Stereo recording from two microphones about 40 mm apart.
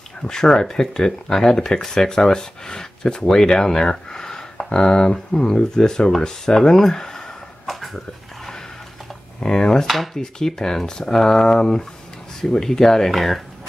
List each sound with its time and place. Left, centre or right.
0.3 s speech: centre
7.6 s a sound: centre
9.4 s speech: centre